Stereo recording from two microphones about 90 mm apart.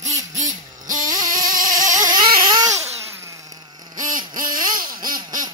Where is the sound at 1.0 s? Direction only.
45° right (ahead or behind).